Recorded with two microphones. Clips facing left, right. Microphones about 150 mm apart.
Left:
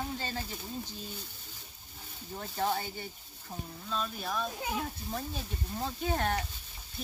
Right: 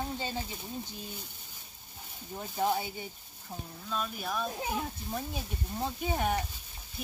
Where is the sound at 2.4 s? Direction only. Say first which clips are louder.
Right 2 dB; 10° right (ahead or behind).